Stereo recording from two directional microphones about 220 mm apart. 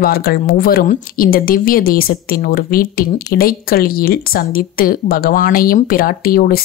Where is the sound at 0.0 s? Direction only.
45° left (ahead or behind).